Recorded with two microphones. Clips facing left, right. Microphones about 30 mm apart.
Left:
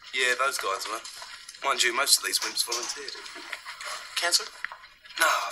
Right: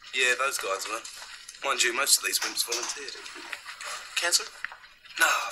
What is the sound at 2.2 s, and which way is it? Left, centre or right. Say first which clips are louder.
Speech: even; centre.